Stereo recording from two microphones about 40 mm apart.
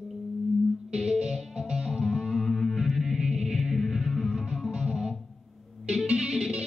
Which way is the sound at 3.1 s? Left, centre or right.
Centre.